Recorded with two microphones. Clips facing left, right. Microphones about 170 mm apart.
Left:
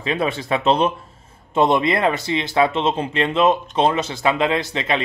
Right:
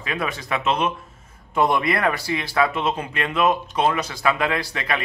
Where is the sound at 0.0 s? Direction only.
25° left (ahead or behind).